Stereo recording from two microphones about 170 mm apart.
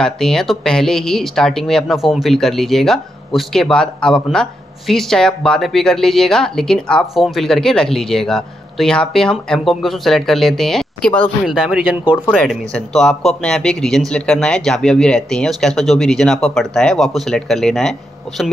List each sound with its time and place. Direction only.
0.0 s speech: 5° left (ahead or behind)